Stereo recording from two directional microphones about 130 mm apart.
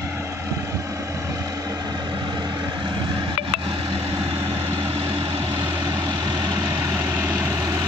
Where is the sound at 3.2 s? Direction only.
45° right (ahead or behind).